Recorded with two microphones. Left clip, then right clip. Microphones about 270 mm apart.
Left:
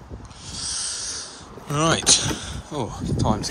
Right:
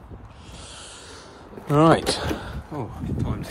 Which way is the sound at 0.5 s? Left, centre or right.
Centre.